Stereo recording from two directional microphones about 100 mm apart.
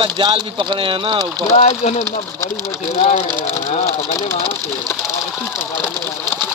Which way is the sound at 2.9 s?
90° left.